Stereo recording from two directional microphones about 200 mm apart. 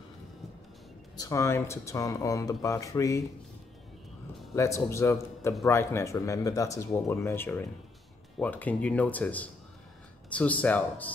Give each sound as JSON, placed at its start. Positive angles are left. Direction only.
{"t": 1.1, "sound": "speech", "side_deg": 15}
{"t": 4.6, "sound": "speech", "side_deg": 15}